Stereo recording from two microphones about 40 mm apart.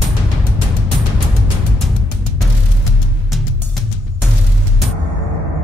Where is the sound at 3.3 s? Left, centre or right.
Centre.